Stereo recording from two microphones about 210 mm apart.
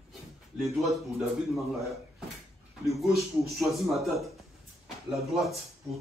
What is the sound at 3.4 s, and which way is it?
Speech, centre (ahead or behind).